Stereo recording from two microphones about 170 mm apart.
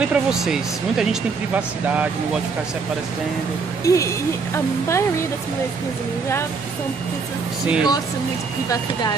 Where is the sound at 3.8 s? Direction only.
20° left (ahead or behind).